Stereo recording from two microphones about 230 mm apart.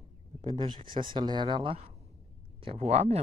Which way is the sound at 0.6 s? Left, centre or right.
Right.